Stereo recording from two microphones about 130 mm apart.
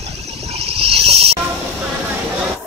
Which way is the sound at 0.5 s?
50° right (ahead or behind).